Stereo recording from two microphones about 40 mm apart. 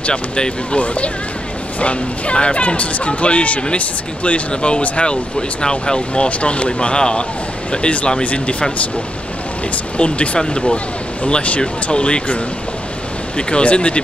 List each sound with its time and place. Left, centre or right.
0.0 s speech: left
9.9 s speech: left
13.4 s speech: left